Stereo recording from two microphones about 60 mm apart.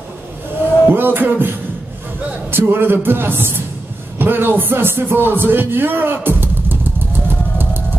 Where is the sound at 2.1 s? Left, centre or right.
Right.